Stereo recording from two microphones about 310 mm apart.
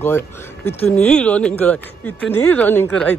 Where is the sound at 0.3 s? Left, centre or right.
Centre.